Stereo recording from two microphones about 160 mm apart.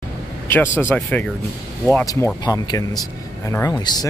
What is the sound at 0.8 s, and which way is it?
Speech, 10° left (ahead or behind).